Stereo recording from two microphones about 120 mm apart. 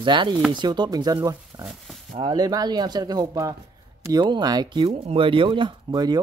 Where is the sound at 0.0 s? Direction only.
40° right (ahead or behind).